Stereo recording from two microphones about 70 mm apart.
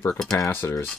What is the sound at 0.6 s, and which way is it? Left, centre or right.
Speech, left.